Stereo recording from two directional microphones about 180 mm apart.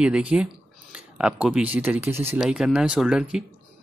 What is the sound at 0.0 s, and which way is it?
Speech, 5° right (ahead or behind).